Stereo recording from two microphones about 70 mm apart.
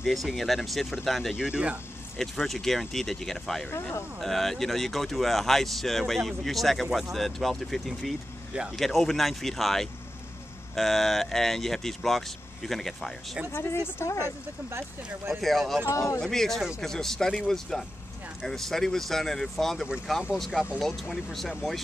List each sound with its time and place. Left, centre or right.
0.0 s speech: centre
1.3 s speech: centre
2.1 s speech: centre
13.5 s speech: left
15.2 s speech: centre